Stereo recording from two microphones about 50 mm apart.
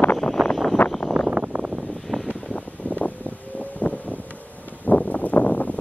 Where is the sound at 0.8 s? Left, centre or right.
Left.